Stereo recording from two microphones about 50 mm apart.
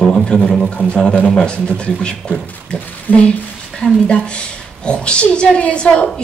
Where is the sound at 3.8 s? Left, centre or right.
Left.